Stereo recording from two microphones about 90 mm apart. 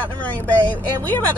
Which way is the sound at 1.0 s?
20° left (ahead or behind).